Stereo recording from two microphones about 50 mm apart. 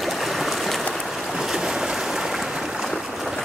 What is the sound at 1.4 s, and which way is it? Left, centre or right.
Boat, centre.